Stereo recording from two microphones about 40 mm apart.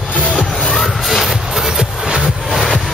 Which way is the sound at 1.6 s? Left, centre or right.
Centre.